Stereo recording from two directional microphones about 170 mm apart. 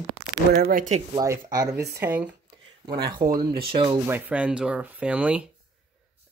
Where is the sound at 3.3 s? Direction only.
30° right (ahead or behind).